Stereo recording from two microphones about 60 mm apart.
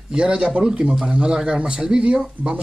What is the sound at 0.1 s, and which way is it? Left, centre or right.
Speech, centre.